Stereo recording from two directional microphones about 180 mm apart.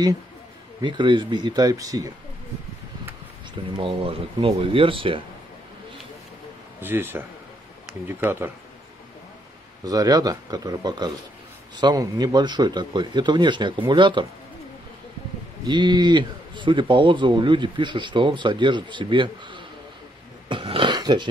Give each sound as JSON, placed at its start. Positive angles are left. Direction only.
{"t": 0.7, "sound": "a man's voice", "side_deg": -25}
{"t": 3.7, "sound": "a man's voice", "side_deg": -30}
{"t": 6.8, "sound": "a man's voice", "side_deg": -10}
{"t": 9.8, "sound": "a man's voice", "side_deg": -20}
{"t": 15.6, "sound": "a man's voice", "side_deg": -25}
{"t": 20.4, "sound": "a sound", "side_deg": -30}